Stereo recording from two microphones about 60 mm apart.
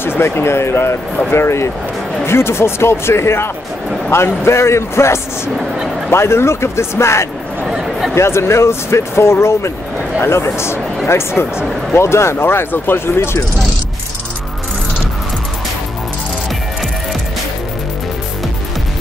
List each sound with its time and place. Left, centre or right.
0.2 s speech: left
7.6 s a sound: centre
8.1 s speech: left